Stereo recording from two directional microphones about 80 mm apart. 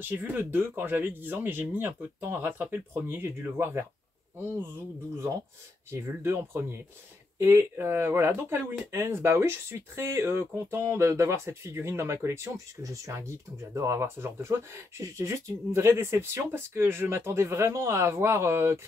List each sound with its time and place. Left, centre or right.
0.0 s speech: right
5.9 s speech: right